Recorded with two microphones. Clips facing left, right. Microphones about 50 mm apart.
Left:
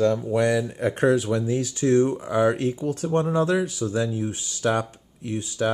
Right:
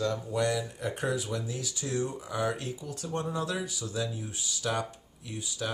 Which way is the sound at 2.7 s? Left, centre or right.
Left.